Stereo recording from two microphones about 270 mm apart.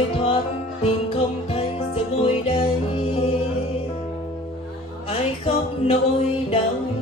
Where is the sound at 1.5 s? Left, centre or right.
Left.